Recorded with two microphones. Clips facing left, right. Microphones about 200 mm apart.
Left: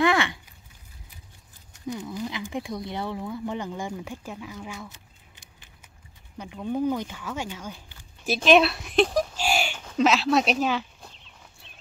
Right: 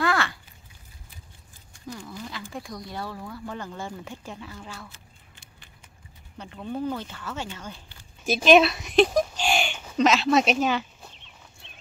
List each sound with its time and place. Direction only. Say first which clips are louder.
0.0 s a sound: left 3 dB; 20° left (ahead or behind)
1.9 s speech: left 6 dB; 20° left (ahead or behind)
6.3 s speech: left 4 dB; 10° left (ahead or behind)
8.4 s a sound: right 1 dB; centre (ahead or behind)
9.8 s chicken: even; centre (ahead or behind)
11.6 s horse: right 2 dB; centre (ahead or behind)